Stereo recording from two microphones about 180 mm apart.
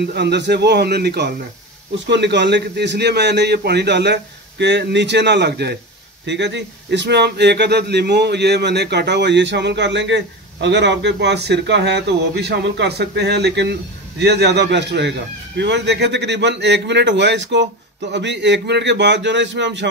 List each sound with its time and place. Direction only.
0.0 s speech: 65° right (ahead or behind)